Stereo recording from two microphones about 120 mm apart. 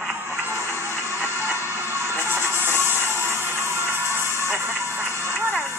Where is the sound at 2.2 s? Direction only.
20° right (ahead or behind).